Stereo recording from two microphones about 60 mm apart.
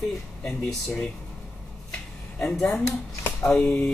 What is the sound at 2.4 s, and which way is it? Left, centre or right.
Speech, centre.